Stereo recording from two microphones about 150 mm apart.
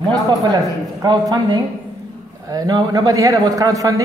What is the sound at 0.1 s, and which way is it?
Speech, 25° right (ahead or behind).